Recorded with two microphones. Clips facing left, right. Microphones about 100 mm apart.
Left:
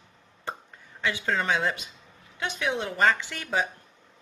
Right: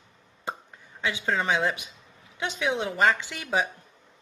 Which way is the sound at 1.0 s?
15° right (ahead or behind).